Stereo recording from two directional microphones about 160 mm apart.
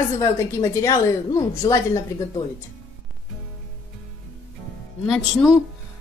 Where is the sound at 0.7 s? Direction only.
20° left (ahead or behind).